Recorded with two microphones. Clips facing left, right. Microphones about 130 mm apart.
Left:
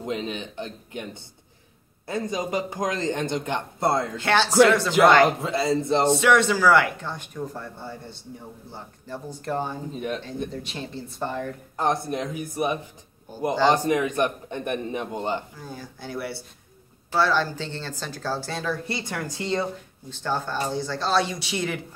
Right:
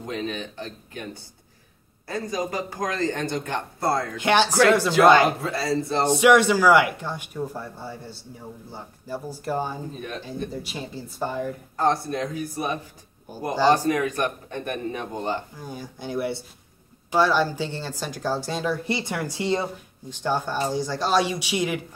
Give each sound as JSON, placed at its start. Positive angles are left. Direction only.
{"t": 0.0, "sound": "speech", "side_deg": 20}
{"t": 4.2, "sound": "a woman's voice", "side_deg": -15}
{"t": 5.4, "sound": "speech", "side_deg": 20}
{"t": 6.0, "sound": "a woman's voice", "side_deg": -10}
{"t": 11.7, "sound": "speech", "side_deg": 20}
{"t": 15.6, "sound": "a woman's voice", "side_deg": -15}